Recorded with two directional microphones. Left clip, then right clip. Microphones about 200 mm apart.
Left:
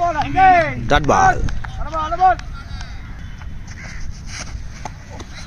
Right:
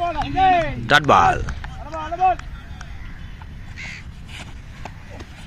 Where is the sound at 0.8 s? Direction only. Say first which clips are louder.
Right 2 dB; centre (ahead or behind).